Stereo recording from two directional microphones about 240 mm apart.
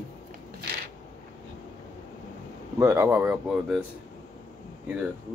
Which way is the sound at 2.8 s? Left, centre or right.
Centre.